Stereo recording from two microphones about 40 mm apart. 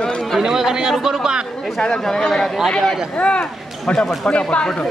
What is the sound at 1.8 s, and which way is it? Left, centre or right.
Speech, centre.